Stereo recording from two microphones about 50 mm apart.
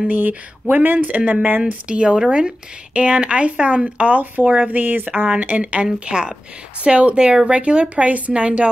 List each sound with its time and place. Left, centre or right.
0.0 s speech: right
1.6 s speech: right
5.3 s speech: right